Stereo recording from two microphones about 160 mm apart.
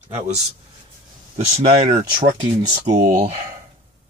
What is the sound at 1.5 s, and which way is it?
Speech, 40° right (ahead or behind).